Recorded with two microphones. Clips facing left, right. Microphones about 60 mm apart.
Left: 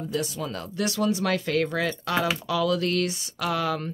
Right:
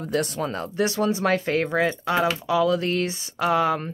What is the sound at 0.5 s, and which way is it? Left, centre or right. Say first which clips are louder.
Speech: right 4 dB; right.